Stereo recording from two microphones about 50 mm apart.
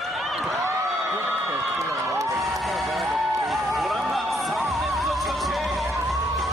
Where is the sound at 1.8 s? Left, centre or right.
Right.